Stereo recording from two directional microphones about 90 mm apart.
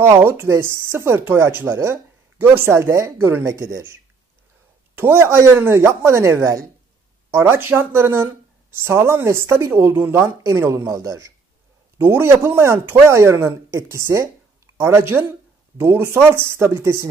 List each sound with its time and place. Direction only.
0.0 s speech: 25° right (ahead or behind)
4.9 s speech: 25° right (ahead or behind)